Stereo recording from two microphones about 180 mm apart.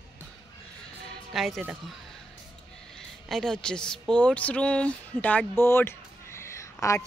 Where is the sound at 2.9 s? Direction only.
5° left (ahead or behind).